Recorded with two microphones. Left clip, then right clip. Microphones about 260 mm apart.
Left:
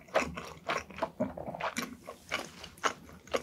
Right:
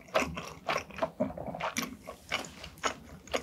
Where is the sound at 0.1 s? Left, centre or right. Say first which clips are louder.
Right 1 dB; centre.